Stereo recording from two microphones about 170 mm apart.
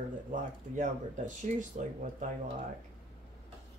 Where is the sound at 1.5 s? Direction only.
45° right (ahead or behind).